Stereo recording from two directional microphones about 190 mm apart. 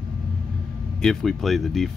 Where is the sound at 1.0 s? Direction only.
Centre (ahead or behind).